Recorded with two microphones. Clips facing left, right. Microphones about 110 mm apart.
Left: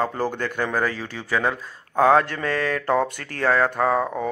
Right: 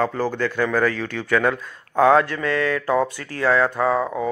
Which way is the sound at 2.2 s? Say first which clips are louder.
Right 3 dB; 45° left (ahead or behind).